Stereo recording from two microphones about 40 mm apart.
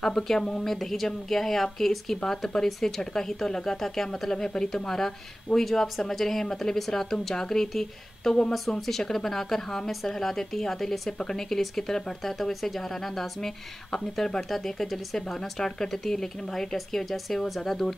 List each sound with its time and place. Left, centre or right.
0.0 s speech: centre
0.7 s speech: centre